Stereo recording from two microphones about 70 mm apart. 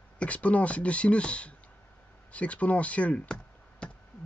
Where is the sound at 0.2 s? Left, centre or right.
Centre.